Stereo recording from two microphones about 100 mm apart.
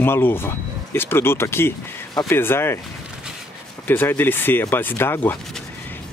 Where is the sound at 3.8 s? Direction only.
20° left (ahead or behind).